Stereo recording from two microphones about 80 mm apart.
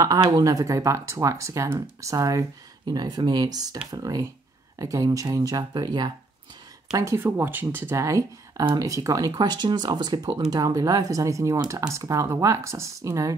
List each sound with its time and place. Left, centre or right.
0.0 s speech: right
2.9 s speech: right
6.9 s speech: right
7.2 s speech: right
10.5 s speech: right